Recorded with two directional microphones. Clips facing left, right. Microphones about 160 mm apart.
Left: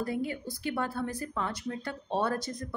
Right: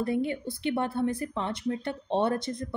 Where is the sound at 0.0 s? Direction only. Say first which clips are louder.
Right 4 dB; 25° right (ahead or behind).